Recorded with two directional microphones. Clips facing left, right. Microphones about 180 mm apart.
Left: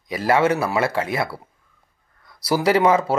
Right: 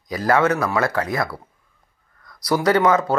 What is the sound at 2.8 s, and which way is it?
Speech, 30° left (ahead or behind).